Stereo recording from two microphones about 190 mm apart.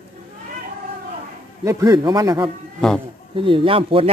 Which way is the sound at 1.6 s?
15° right (ahead or behind).